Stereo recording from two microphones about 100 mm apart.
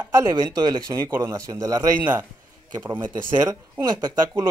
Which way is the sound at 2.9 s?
40° right (ahead or behind).